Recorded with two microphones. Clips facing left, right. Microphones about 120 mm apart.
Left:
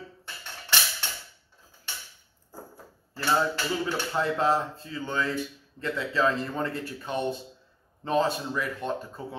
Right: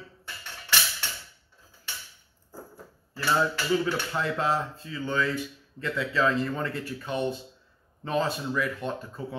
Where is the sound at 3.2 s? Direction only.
25° left (ahead or behind).